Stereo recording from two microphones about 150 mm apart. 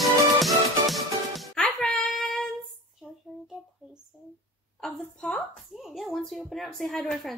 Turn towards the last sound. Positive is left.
turn(degrees=0)  # may be behind; listen again after turning